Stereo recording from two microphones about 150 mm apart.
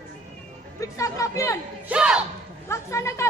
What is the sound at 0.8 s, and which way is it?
Speech, 20° left (ahead or behind).